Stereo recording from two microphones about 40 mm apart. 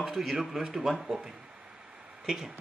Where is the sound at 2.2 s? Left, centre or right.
Centre.